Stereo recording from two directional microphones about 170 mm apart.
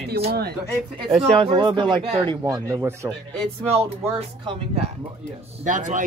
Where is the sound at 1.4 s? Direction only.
30° right (ahead or behind).